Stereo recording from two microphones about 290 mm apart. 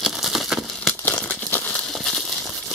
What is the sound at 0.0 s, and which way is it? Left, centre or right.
Crumpling, centre.